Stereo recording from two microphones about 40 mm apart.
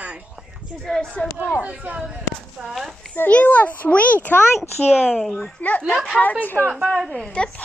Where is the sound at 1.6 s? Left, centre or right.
Right.